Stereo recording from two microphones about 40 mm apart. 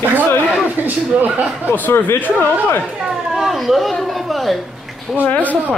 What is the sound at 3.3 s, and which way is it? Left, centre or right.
Speech, centre.